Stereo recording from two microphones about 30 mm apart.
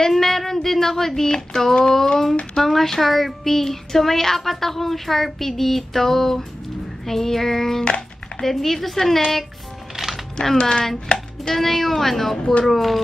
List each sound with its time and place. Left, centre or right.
0.1 s speech: centre
10.0 s music: right
10.6 s chopping: left
11.4 s speech: centre